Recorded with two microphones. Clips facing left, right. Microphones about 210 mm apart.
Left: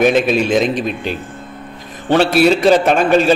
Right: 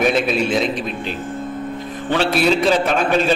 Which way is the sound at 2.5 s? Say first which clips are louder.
Left 5 dB; 55° left (ahead or behind).